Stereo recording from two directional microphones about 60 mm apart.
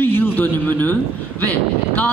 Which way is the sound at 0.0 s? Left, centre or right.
Left.